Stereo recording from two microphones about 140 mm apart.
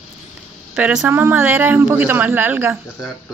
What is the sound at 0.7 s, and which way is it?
A man's voice, 10° right (ahead or behind).